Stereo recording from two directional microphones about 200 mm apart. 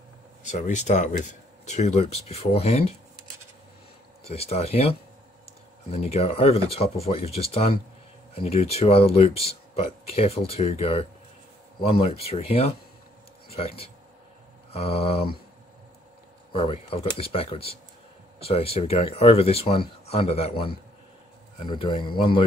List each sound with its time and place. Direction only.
0.4 s speech: 35° left (ahead or behind)
4.3 s speech: 30° left (ahead or behind)
16.5 s speech: 30° left (ahead or behind)